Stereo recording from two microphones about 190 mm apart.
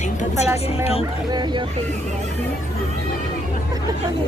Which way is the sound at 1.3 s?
25° right (ahead or behind).